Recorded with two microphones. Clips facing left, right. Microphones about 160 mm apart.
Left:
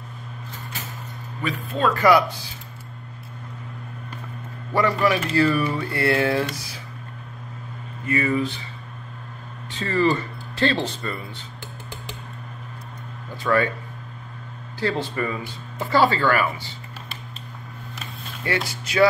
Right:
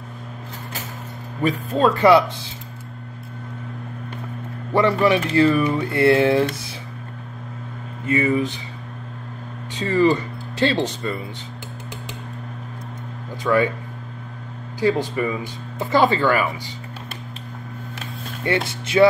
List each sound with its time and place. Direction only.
1.4 s speech: 40° right (ahead or behind); by 2.3 s 25° right (ahead or behind)
4.7 s speech: 25° right (ahead or behind)
8.1 s speech: 20° right (ahead or behind)
9.8 s speech: 15° right (ahead or behind)
13.4 s speech: 15° right (ahead or behind)
14.8 s speech: 15° right (ahead or behind)
18.4 s speech: 25° right (ahead or behind)